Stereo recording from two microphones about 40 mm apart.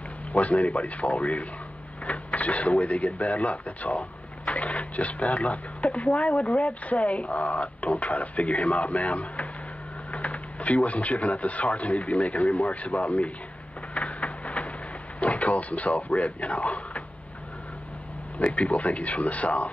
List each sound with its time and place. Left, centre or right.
0.3 s speech: left
13.9 s a sound: left
15.1 s speech: left
18.4 s speech: left